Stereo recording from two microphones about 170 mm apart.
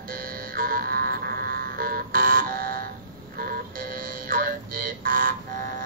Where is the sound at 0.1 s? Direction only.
55° right (ahead or behind).